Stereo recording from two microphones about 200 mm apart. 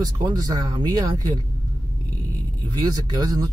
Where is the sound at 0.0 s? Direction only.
20° right (ahead or behind).